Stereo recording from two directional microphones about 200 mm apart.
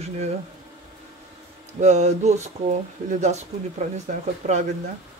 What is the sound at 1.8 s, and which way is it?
Speech, 35° right (ahead or behind).